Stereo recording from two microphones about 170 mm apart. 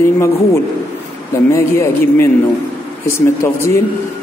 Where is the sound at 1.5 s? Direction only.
15° left (ahead or behind).